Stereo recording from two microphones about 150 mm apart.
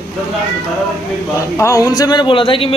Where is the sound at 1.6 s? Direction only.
20° left (ahead or behind); by 2.8 s 35° left (ahead or behind).